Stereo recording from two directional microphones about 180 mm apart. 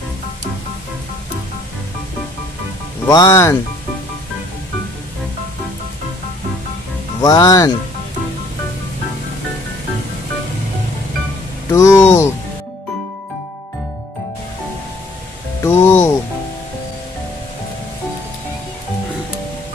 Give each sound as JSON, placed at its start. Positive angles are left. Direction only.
{"t": 3.1, "sound": "speech", "side_deg": 20}
{"t": 7.2, "sound": "speech", "side_deg": 20}
{"t": 11.7, "sound": "speech", "side_deg": 15}
{"t": 15.6, "sound": "speech", "side_deg": 15}